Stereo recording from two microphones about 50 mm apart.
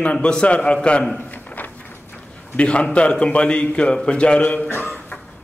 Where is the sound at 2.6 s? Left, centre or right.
Left.